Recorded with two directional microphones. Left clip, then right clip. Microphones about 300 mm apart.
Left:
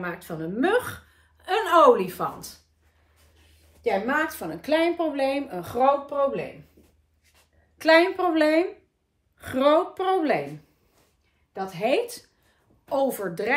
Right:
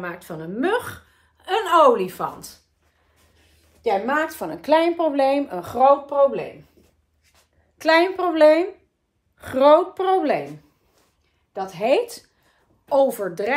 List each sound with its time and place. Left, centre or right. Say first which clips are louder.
0.0 s a woman's voice: right 1 dB; centre
7.7 s a woman's voice: right 1 dB; centre
11.5 s a woman's voice: right 4 dB; centre